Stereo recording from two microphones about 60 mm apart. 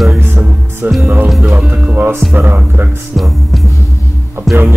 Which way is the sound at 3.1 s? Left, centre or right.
Centre.